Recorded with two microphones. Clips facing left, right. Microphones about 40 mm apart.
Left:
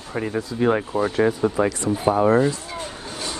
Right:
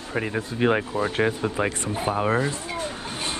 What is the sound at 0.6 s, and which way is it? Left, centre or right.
Speech, right.